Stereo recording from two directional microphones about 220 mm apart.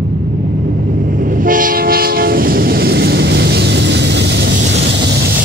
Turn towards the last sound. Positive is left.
turn(degrees=-50)  # may be behind; listen again after turning